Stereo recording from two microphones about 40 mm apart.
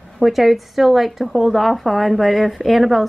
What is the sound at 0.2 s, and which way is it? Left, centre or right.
A woman's voice, centre.